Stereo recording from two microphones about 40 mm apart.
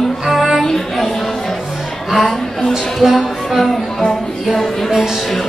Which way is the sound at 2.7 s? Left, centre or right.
Centre.